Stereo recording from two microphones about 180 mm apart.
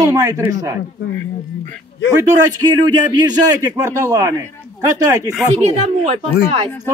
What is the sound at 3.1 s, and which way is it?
A man's voice, 20° right (ahead or behind).